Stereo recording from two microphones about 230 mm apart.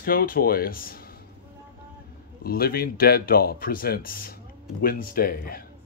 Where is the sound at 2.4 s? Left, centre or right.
Left.